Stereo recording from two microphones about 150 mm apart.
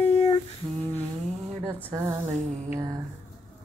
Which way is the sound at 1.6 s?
20° right (ahead or behind).